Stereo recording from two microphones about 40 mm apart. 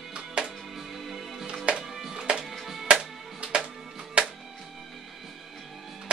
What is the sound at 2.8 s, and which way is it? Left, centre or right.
Music, right.